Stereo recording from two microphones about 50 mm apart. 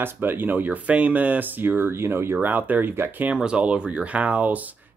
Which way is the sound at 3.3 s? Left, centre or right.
Right.